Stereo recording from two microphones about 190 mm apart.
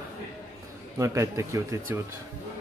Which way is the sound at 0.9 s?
15° right (ahead or behind).